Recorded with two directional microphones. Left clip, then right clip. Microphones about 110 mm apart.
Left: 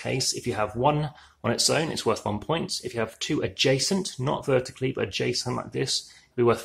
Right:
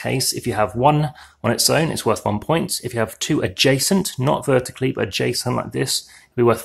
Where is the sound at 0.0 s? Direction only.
35° right (ahead or behind).